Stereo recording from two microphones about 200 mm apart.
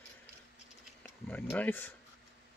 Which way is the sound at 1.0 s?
10° left (ahead or behind).